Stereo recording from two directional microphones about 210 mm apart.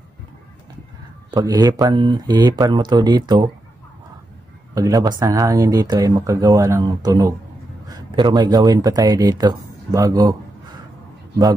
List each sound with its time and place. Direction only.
1.3 s speech: 20° right (ahead or behind)
4.7 s speech: 15° right (ahead or behind)